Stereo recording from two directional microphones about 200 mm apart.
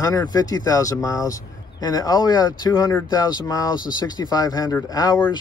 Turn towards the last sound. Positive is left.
turn(degrees=15)  # may be behind; listen again after turning